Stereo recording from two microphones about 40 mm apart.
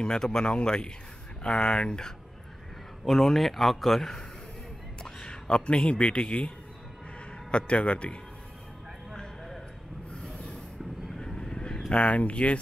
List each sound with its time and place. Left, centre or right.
0.0 s speech: centre
3.1 s speech: centre
5.0 s speech: left
7.5 s speech: left
10.2 s rub: left
11.1 s vehicle: centre
11.9 s speech: left